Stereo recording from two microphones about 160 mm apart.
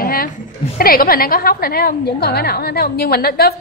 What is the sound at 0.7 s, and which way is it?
A woman's voice, 65° left (ahead or behind).